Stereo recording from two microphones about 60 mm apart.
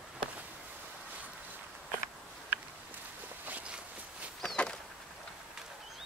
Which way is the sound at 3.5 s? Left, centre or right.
Right.